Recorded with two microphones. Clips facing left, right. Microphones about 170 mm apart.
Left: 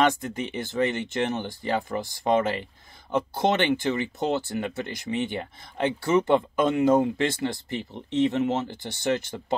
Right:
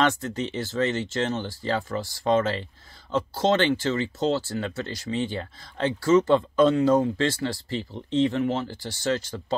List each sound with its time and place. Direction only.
0.0 s speech: 15° left (ahead or behind)